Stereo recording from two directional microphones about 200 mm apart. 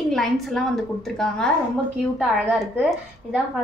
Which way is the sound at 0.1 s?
Centre (ahead or behind).